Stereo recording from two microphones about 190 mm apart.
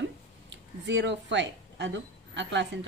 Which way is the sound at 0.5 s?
65° right (ahead or behind).